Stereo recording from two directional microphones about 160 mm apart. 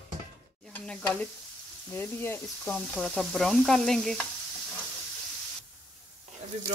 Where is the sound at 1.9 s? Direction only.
15° left (ahead or behind).